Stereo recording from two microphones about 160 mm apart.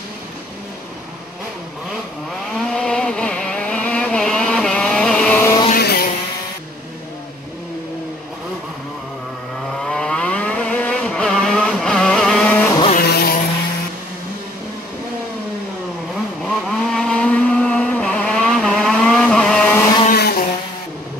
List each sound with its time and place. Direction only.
2.6 s vehicle: 5° left (ahead or behind)
5.8 s vehicle: 80° left
9.7 s vehicle: 5° left (ahead or behind)
12.9 s vehicle: 80° left
16.4 s vehicle: centre (ahead or behind)
20.1 s a sound: 70° left (ahead or behind)